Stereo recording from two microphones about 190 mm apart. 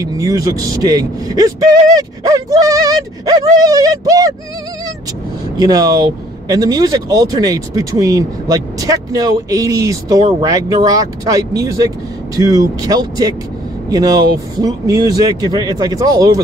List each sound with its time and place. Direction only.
0.0 s speech: 15° right (ahead or behind)
5.6 s speech: 20° right (ahead or behind)